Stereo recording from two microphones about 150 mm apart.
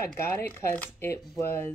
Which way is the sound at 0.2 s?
15° left (ahead or behind).